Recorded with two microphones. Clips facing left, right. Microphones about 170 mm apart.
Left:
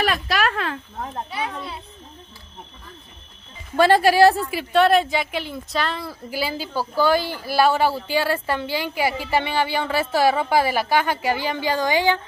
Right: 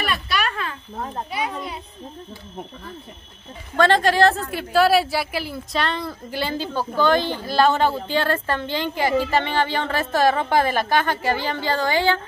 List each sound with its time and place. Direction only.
0.0 s a sound: 90° left
1.3 s a child's voice: 15° right (ahead or behind)
3.7 s a woman's voice: 10° left (ahead or behind)